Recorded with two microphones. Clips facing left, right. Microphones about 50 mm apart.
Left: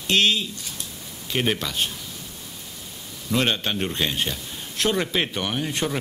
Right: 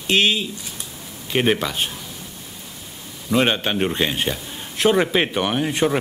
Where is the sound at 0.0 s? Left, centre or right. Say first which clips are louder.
Right 2 dB; centre.